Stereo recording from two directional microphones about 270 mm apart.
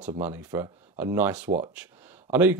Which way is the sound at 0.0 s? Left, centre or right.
Centre.